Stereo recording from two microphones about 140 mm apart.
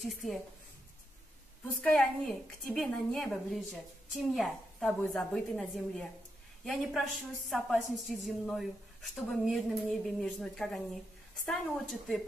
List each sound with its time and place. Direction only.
0.0 s a woman's voice: centre (ahead or behind)
1.8 s a woman's voice: 5° left (ahead or behind)